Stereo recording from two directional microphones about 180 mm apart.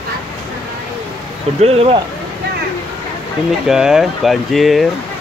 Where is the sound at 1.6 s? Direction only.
35° right (ahead or behind).